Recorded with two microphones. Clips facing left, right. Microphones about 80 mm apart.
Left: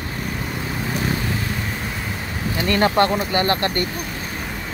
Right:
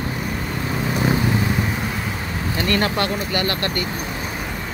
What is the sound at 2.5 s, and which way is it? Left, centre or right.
Speech, centre.